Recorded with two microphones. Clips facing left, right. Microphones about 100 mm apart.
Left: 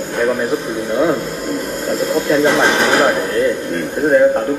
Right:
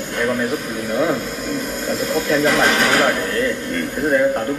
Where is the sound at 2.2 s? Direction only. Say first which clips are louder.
Left 3 dB; 25° left (ahead or behind).